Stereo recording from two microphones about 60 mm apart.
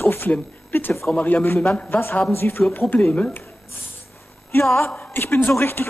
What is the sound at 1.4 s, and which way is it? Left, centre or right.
A man's voice, left.